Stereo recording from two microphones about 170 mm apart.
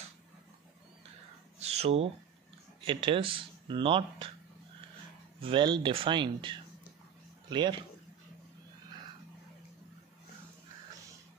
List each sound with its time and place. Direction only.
1.6 s a sound: 40° right (ahead or behind)
2.8 s speech: 30° right (ahead or behind)
5.4 s speech: 30° right (ahead or behind)